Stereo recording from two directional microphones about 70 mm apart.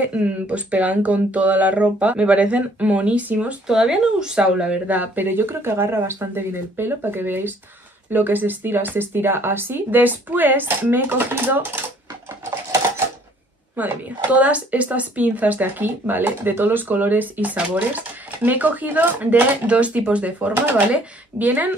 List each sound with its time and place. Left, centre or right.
0.0 s speech: centre
3.6 s speech: centre
4.8 s speech: right
13.7 s speech: right